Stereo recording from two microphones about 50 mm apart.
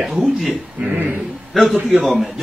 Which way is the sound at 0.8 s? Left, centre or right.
Right.